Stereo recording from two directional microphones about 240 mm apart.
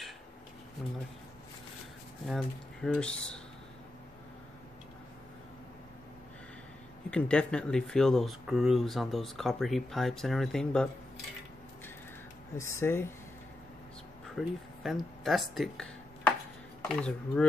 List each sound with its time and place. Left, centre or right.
0.8 s speech: centre
2.2 s speech: centre
7.1 s speech: centre
12.5 s speech: centre
14.3 s speech: centre